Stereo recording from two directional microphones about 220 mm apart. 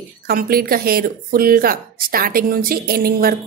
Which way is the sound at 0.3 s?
40° right (ahead or behind).